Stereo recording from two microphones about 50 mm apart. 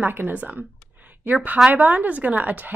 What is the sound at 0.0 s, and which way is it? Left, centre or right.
A woman's voice, right.